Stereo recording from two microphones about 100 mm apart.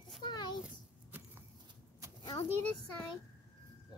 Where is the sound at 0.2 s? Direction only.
50° left (ahead or behind).